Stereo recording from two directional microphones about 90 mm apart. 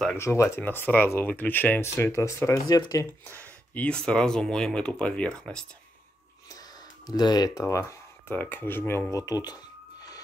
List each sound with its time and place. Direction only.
0.2 s speech: 30° left (ahead or behind)
0.6 s speech: 20° left (ahead or behind); by 3.1 s 45° left (ahead or behind)
3.3 s speech: 15° left (ahead or behind)
7.1 s speech: 50° left (ahead or behind)
7.6 s speech: 35° left (ahead or behind)
8.3 s speech: 20° left (ahead or behind)
9.1 s speech: 45° left (ahead or behind)